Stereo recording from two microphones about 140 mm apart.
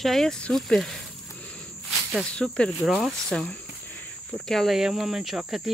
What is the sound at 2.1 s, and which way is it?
Speech, 5° left (ahead or behind).